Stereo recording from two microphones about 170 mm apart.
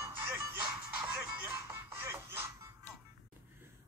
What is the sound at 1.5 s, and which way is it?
Music, 15° right (ahead or behind).